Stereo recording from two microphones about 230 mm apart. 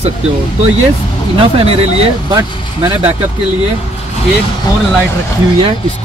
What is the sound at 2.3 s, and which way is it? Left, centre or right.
Speech, centre.